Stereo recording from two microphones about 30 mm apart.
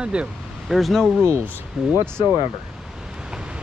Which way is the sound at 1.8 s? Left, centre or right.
Centre.